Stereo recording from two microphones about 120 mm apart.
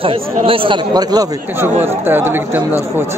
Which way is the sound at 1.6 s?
20° right (ahead or behind).